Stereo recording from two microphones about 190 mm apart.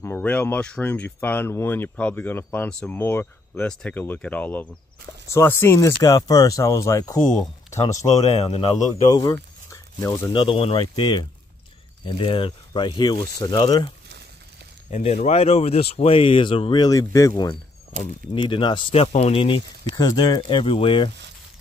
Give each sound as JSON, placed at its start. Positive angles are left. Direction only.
{"t": 0.0, "sound": "speech", "side_deg": 10}
{"t": 8.3, "sound": "speech", "side_deg": 30}
{"t": 9.0, "sound": "speech", "side_deg": 20}
{"t": 14.9, "sound": "speech", "side_deg": 35}